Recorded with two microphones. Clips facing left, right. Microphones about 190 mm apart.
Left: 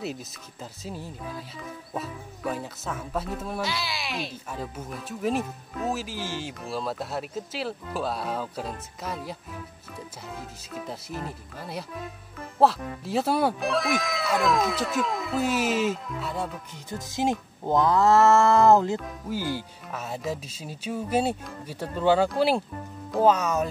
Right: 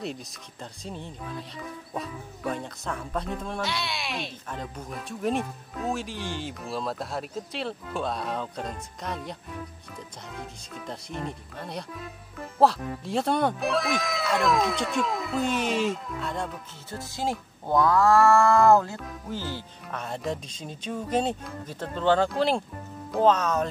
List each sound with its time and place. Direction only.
0.0 s speech: 5° left (ahead or behind)
16.7 s speech: 20° left (ahead or behind)